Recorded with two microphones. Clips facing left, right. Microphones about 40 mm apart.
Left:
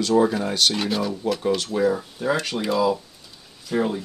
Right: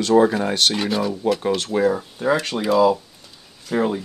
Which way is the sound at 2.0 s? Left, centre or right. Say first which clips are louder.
Right 3 dB; right.